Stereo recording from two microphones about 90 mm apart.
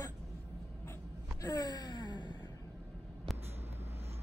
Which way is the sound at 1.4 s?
45° left (ahead or behind).